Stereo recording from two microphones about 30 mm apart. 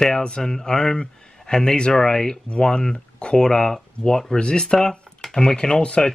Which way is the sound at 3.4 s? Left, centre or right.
Centre.